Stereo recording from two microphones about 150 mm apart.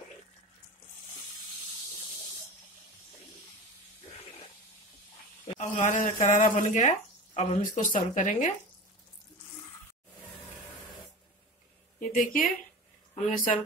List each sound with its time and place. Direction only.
5.6 s speech: 55° left (ahead or behind)
12.0 s a sound: 60° left (ahead or behind)
13.3 s speech: 60° left (ahead or behind)